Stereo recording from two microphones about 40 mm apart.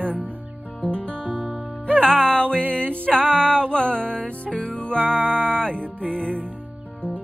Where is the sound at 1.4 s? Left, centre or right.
Right.